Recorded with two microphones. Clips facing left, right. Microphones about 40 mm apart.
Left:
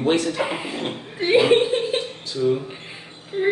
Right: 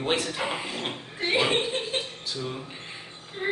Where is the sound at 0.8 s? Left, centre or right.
Centre.